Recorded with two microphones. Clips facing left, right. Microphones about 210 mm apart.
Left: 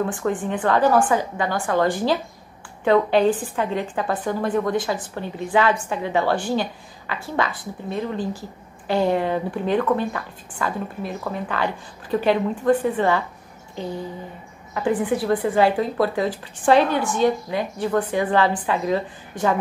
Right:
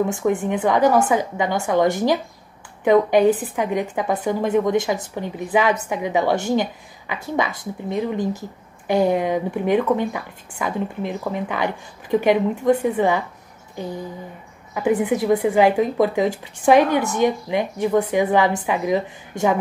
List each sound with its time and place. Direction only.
0.0 s speech: 10° right (ahead or behind)
0.3 s a woman's voice: 25° right (ahead or behind)
14.7 s a woman's voice: 10° right (ahead or behind)
15.0 s a woman's voice: 20° right (ahead or behind)